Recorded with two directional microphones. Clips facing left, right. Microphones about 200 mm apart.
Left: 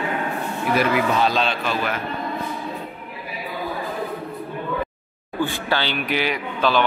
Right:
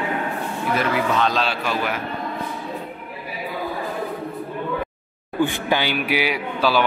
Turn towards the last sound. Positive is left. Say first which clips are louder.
# even
turn(degrees=-10)  # may be behind; listen again after turning